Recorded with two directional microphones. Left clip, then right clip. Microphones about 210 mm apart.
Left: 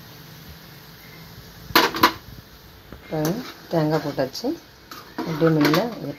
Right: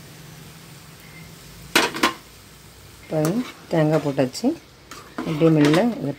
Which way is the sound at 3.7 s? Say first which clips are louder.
Right 2 dB; 40° right (ahead or behind).